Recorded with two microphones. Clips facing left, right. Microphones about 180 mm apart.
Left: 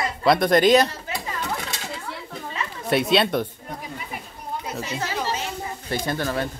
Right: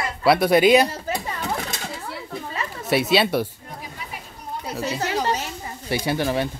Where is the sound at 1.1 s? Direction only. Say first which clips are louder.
Right 4 dB; 40° right (ahead or behind).